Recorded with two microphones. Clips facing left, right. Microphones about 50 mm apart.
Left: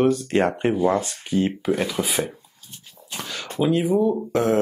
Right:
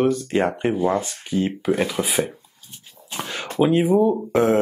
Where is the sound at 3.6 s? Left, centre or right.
Right.